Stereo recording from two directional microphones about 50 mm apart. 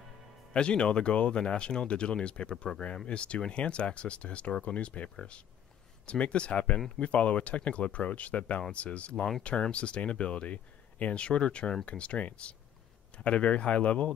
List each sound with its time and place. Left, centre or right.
0.5 s speech: left
9.1 s speech: centre
9.4 s speech: left